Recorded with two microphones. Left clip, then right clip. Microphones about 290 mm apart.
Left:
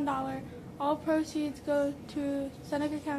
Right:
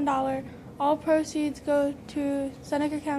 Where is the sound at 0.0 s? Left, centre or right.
Right.